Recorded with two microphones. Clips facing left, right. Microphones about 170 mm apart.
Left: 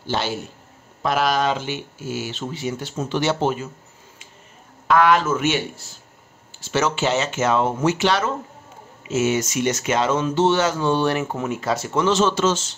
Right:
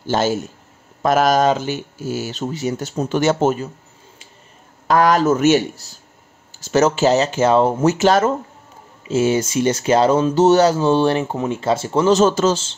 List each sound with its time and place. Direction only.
0.0 s a man's voice: 45° right (ahead or behind)
4.8 s speech: 40° right (ahead or behind)
9.0 s speech: 30° right (ahead or behind)